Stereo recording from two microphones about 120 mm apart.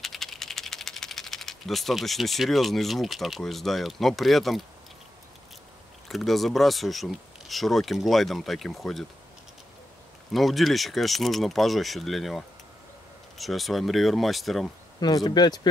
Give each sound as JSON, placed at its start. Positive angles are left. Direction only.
{"t": 0.0, "sound": "speech", "side_deg": 0}
{"t": 6.0, "sound": "speech", "side_deg": 0}
{"t": 10.3, "sound": "speech", "side_deg": 0}
{"t": 15.0, "sound": "speech", "side_deg": 35}